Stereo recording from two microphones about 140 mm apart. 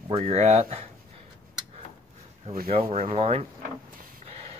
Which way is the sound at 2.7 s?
45° right (ahead or behind).